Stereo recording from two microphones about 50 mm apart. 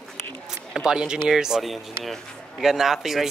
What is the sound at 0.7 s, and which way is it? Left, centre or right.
Speech, centre.